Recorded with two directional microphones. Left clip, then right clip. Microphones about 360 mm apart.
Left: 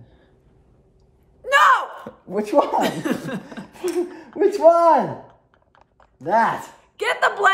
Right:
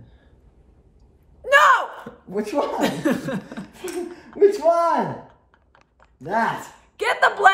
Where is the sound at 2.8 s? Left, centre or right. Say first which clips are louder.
Left 1 dB; centre.